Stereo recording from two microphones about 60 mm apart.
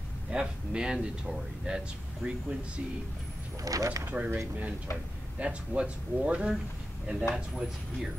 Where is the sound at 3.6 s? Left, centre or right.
Right.